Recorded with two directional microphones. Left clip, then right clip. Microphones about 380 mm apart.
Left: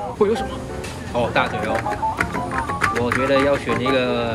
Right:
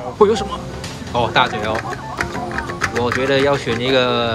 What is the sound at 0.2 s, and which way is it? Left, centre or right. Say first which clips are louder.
Speech: right 6 dB; centre.